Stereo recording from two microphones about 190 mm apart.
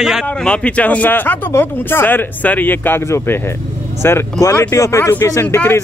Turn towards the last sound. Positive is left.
turn(degrees=10)  # may be behind; listen again after turning